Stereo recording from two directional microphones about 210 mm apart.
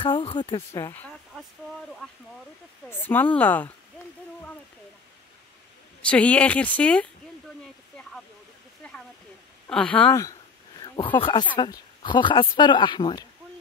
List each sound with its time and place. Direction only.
0.0 s speech: 25° left (ahead or behind)
0.7 s speech: 10° left (ahead or behind)
2.9 s speech: 10° left (ahead or behind)
4.0 s a sound: 5° left (ahead or behind)
6.0 s speech: 5° left (ahead or behind)
7.6 s a sound: centre (ahead or behind)
8.8 s waterfall: 5° left (ahead or behind)
9.7 s speech: 5° left (ahead or behind)
11.1 s speech: 20° left (ahead or behind)